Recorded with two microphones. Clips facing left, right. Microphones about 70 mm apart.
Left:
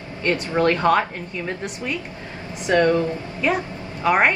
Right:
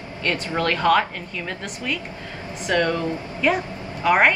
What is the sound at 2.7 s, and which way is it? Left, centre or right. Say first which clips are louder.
Speech: left 4 dB; left.